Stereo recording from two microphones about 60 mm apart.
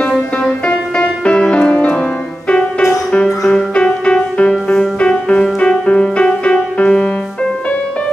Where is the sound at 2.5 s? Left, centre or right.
Left.